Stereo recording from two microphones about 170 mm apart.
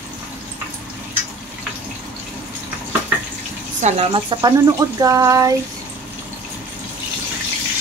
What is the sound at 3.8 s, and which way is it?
Speech, 40° right (ahead or behind).